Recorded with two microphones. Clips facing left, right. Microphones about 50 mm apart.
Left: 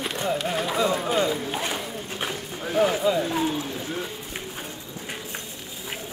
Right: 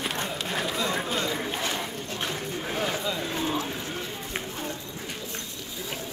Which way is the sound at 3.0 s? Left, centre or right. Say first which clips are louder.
Left 7 dB; left.